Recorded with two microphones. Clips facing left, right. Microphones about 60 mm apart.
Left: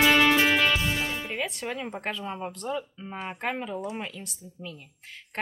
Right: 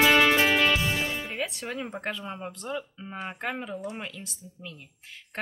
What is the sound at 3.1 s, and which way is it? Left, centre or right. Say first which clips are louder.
Speech: even; centre.